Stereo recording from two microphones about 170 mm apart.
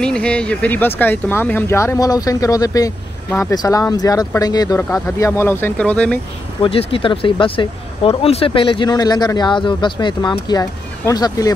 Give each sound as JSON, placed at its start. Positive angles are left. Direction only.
{"t": 0.0, "sound": "speech", "side_deg": 5}
{"t": 6.6, "sound": "speech", "side_deg": 30}